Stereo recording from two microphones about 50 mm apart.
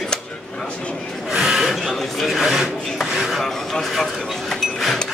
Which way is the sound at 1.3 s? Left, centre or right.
Centre.